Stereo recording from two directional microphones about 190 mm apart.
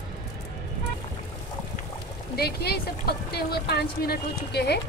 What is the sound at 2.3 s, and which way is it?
Speech, 55° left (ahead or behind).